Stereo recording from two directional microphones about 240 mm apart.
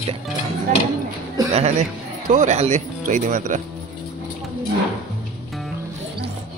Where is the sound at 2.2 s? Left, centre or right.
Right.